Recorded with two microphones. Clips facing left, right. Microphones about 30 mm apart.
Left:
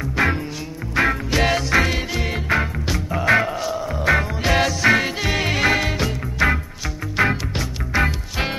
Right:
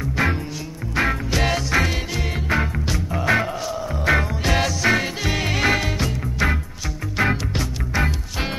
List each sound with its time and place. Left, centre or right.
0.0 s music: centre